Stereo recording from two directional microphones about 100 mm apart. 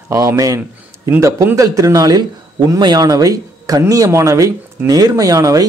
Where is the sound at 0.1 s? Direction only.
35° right (ahead or behind).